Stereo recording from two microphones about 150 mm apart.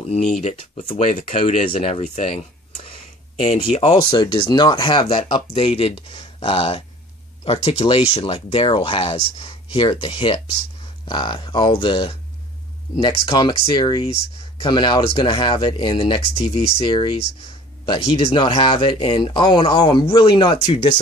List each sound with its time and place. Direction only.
0.0 s speech: 45° left (ahead or behind)
2.8 s a sound: 40° left (ahead or behind)
4.1 s speech: 30° left (ahead or behind)
13.3 s speech: 30° left (ahead or behind)